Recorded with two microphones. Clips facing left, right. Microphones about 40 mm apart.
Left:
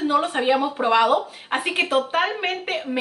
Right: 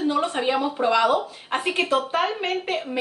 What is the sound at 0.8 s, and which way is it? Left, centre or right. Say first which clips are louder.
Speech: left 1 dB; left.